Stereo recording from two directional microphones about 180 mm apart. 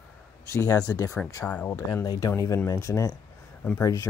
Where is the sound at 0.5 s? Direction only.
15° left (ahead or behind).